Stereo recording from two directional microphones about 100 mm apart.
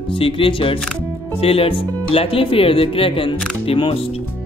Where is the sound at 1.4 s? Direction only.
70° left (ahead or behind).